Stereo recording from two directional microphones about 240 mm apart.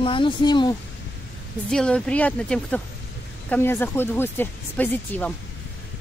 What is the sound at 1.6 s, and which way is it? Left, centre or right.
Speech, centre.